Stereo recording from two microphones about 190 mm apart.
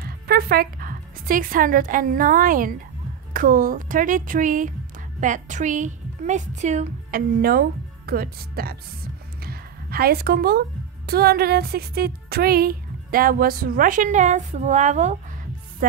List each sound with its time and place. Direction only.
0.0 s a woman's voice: 55° right (ahead or behind)
9.4 s a sound: 55° right (ahead or behind)
11.1 s speech: 55° right (ahead or behind); by 15.1 s 40° right (ahead or behind)